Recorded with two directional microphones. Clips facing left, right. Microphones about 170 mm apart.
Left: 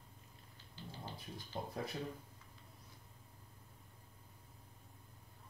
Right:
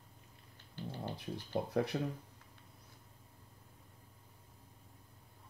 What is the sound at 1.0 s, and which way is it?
Speech, 65° right (ahead or behind).